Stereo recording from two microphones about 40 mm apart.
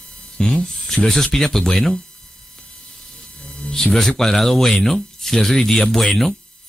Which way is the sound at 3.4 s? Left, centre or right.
Centre.